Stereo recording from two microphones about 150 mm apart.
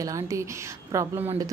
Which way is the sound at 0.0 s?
20° right (ahead or behind).